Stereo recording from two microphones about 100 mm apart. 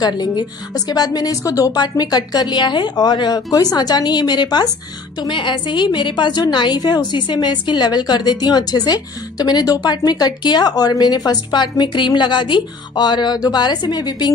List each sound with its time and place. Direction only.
0.0 s a woman's voice: 45° left (ahead or behind)